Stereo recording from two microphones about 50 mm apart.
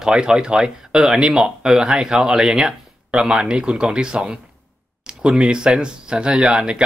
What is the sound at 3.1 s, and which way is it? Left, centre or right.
Speech, centre.